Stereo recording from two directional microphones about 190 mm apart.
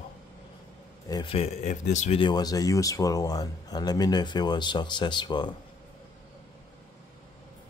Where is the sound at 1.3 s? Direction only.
35° left (ahead or behind).